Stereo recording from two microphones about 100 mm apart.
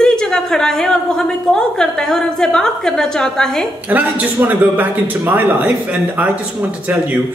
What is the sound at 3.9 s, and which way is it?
A man's voice, 15° right (ahead or behind).